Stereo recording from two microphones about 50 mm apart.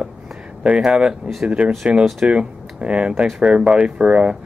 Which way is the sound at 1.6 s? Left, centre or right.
Right.